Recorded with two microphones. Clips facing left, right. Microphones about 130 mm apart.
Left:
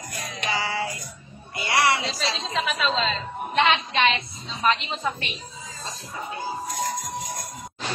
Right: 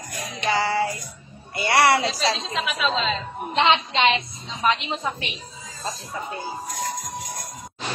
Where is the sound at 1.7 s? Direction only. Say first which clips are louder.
Right 4 dB; 70° right (ahead or behind).